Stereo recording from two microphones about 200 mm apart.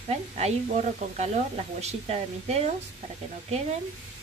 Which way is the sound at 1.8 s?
35° right (ahead or behind).